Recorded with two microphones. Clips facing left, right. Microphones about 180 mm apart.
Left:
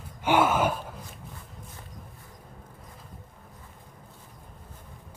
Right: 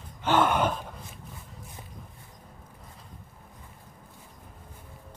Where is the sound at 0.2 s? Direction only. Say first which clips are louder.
Left 1 dB; 10° left (ahead or behind).